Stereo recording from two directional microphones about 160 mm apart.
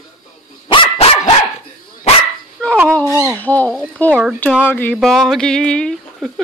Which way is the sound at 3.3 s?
10° left (ahead or behind).